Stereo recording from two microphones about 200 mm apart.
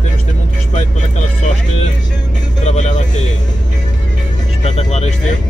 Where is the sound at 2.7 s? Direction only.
35° left (ahead or behind).